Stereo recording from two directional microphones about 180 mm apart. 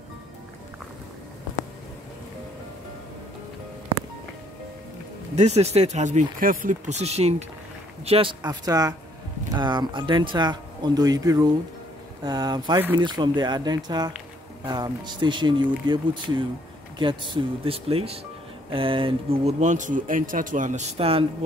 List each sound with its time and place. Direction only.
5.3 s speech: 40° right (ahead or behind)